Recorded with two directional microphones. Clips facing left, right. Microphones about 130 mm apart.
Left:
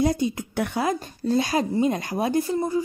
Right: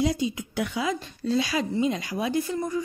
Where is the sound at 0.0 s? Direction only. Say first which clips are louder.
Left 3 dB; 50° left (ahead or behind).